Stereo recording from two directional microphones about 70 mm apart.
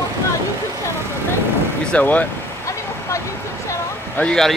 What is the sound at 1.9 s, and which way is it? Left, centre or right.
Speech, left.